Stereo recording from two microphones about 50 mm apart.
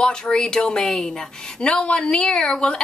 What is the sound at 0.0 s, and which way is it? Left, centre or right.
A woman's voice, centre.